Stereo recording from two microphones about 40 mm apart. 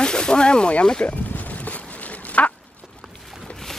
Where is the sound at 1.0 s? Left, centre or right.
Left.